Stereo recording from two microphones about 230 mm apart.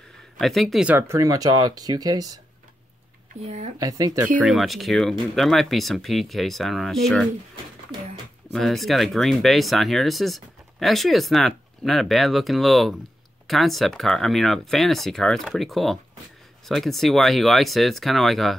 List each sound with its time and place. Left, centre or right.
0.4 s speech: centre
3.4 s speech: right
3.7 s speech: centre
4.4 s speech: centre
8.5 s speech: centre